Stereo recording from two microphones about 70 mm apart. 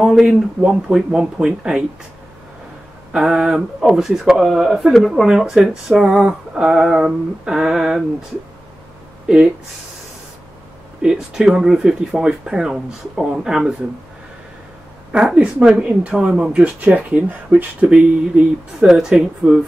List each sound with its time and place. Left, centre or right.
0.0 s speech: centre
3.1 s speech: centre
9.3 s speech: centre
11.0 s speech: centre
15.1 s speech: centre